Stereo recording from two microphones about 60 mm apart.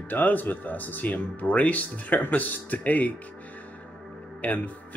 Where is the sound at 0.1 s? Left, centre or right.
Left.